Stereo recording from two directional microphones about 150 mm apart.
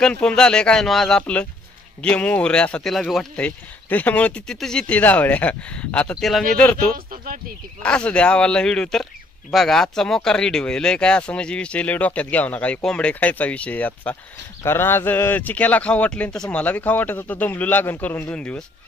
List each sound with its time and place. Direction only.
0.0 s speech: 5° left (ahead or behind)
7.1 s speech: 75° right (ahead or behind)
7.8 s speech: 5° left (ahead or behind)